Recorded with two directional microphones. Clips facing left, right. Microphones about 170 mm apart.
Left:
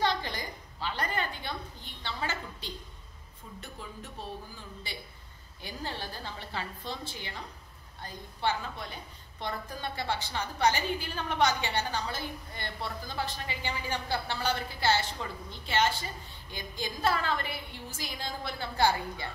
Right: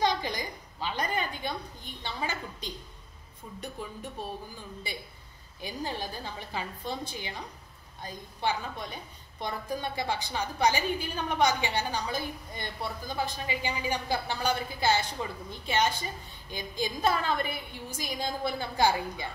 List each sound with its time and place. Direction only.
0.0 s a woman's voice: 15° right (ahead or behind)
5.6 s a woman's voice: 15° right (ahead or behind)